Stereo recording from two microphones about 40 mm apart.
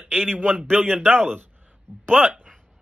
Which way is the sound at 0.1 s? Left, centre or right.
Right.